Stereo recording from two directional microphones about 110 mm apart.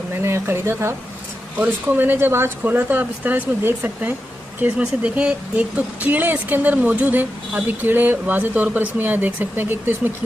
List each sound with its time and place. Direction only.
0.2 s speech: 25° right (ahead or behind)